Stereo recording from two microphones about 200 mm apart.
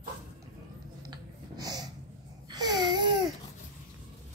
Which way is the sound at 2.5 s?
20° right (ahead or behind).